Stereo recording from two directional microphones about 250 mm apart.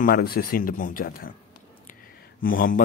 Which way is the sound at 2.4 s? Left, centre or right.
Left.